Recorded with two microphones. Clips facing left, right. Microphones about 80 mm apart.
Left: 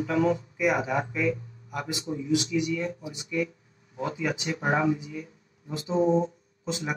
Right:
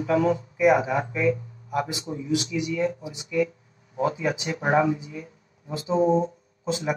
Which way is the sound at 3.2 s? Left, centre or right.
Right.